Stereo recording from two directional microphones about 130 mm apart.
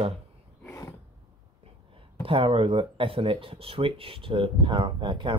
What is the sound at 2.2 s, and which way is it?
Speech, 45° right (ahead or behind).